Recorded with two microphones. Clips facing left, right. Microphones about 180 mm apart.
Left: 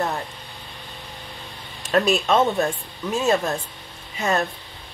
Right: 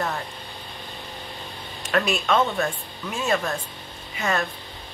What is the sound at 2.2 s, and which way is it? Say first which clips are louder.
Speech: left 3 dB; 25° left (ahead or behind).